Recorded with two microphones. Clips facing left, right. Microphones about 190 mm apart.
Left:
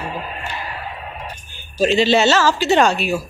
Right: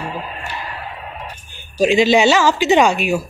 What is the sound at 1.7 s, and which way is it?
Speech, 15° right (ahead or behind).